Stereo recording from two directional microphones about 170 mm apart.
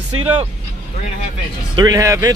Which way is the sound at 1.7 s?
20° right (ahead or behind).